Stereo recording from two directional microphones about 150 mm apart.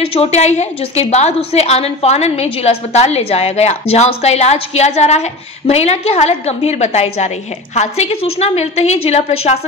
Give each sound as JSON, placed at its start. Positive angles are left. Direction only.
{"t": 0.0, "sound": "a woman's voice", "side_deg": 40}